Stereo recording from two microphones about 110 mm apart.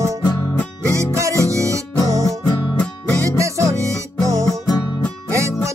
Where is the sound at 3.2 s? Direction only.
30° right (ahead or behind).